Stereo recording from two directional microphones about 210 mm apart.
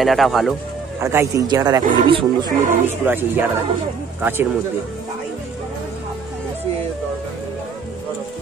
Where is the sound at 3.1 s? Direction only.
10° right (ahead or behind).